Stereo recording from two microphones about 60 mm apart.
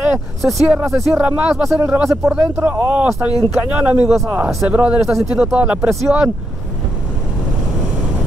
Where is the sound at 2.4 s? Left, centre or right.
Right.